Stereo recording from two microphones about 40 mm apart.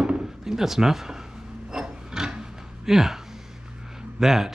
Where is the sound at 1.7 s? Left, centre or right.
Centre.